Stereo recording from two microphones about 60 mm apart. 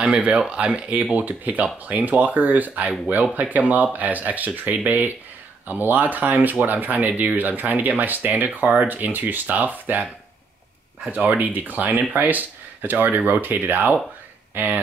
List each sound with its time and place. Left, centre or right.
0.0 s speech: right
11.1 s speech: right